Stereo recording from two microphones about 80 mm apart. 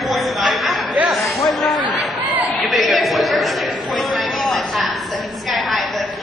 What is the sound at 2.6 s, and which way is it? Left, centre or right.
Chatter, centre.